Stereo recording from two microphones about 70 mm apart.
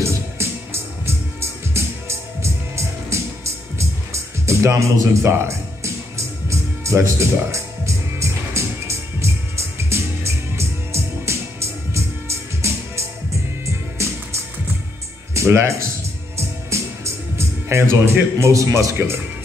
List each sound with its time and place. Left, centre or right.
0.0 s music: right
15.3 s speech: right
16.3 s music: right
18.9 s speech: right